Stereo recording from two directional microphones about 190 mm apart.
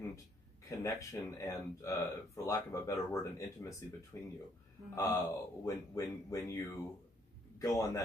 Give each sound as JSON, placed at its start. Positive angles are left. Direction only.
{"t": 0.7, "sound": "a man's voice", "side_deg": 15}